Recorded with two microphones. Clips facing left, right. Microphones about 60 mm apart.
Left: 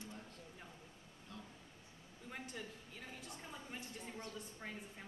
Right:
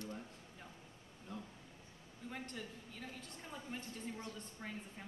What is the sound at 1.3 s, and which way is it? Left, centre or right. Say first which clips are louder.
Speech: right 5 dB; centre.